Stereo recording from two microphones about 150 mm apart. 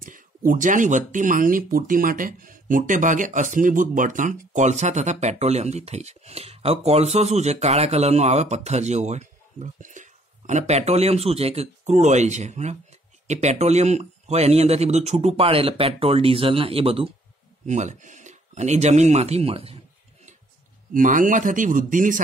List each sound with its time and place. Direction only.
0.5 s speech: 60° right (ahead or behind); by 17.1 s 40° right (ahead or behind)
17.6 s speech: 50° right (ahead or behind)
20.9 s speech: 60° right (ahead or behind)